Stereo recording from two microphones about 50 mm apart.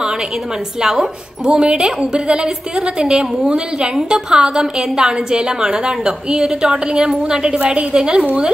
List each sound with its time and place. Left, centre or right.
0.7 s a woman's voice: centre